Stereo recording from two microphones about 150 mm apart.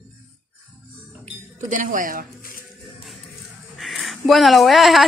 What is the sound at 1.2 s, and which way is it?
Chink, 60° right (ahead or behind).